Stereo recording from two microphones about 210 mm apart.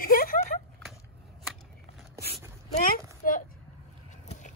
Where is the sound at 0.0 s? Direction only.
40° left (ahead or behind).